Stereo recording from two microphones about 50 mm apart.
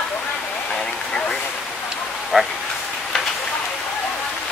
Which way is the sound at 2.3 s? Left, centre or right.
Centre.